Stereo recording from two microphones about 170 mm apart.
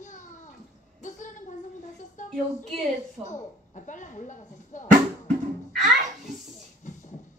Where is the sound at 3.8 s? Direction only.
45° left (ahead or behind).